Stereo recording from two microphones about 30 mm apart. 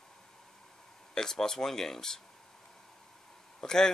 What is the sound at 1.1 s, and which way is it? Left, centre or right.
Speech, centre.